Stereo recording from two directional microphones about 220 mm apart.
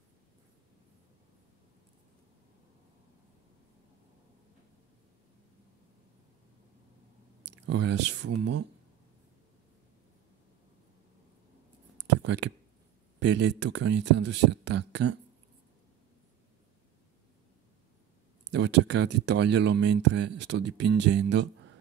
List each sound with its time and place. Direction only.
7.5 s speech: 50° right (ahead or behind)
12.0 s a sound: 55° right (ahead or behind)
13.2 s speech: 55° right (ahead or behind)
18.5 s speech: 55° right (ahead or behind)